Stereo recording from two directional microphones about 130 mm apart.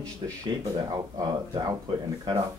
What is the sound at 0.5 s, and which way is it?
Speech, 30° right (ahead or behind).